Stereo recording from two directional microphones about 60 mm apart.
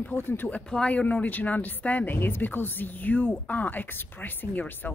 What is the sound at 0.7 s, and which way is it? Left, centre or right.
Speech, centre.